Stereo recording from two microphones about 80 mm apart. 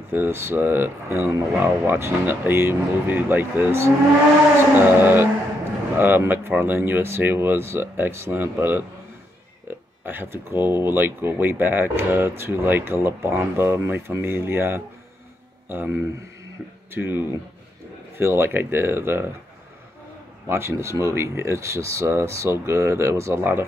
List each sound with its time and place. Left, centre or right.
0.1 s speech: right
20.4 s speech: right